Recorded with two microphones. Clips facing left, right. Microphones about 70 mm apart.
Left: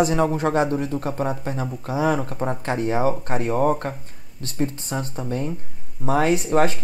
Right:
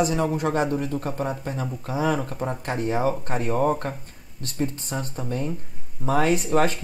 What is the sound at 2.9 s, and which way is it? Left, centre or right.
Speech, left.